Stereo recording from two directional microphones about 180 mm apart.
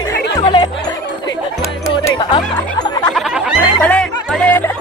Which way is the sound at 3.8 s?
5° left (ahead or behind).